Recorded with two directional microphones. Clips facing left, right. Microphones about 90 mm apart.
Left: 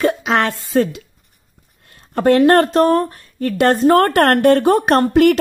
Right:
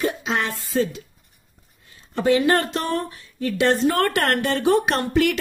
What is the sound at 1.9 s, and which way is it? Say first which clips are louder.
Speech: left 6 dB; 55° left (ahead or behind).